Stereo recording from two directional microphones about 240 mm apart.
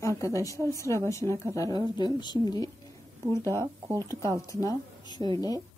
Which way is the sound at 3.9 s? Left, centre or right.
Centre.